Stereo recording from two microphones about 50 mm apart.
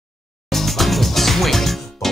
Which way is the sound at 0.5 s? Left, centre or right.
Centre.